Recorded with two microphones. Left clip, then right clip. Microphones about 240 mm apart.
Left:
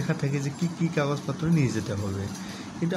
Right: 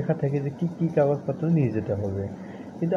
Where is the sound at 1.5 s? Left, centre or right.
Centre.